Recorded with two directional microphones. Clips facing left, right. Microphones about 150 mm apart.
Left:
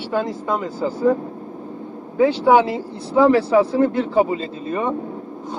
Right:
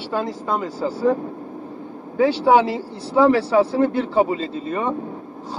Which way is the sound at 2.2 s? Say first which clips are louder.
Left 1 dB; 30° right (ahead or behind).